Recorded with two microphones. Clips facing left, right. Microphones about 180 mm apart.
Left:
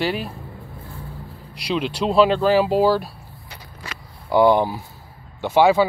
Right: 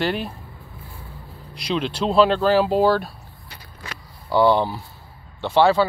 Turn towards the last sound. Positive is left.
turn(degrees=10)  # may be behind; listen again after turning